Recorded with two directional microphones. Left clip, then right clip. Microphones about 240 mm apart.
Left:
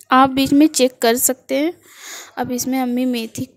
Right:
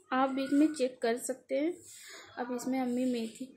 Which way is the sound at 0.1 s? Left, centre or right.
Left.